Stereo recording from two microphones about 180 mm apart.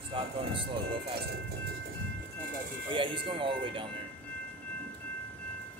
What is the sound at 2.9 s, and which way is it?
Speech, 30° right (ahead or behind).